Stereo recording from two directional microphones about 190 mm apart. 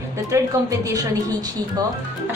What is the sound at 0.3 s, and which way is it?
A woman's voice, 15° right (ahead or behind).